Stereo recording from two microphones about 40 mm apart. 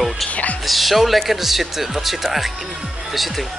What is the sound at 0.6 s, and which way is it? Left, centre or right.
Speech, centre.